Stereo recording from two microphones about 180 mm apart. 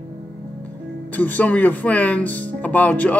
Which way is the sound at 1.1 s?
10° left (ahead or behind).